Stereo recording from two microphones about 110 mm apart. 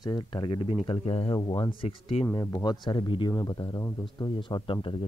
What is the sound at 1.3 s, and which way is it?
Speech, 45° left (ahead or behind).